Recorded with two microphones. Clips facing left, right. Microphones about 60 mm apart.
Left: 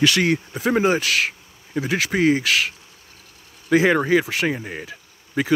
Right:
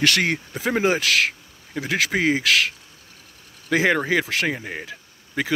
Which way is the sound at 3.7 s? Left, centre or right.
Centre.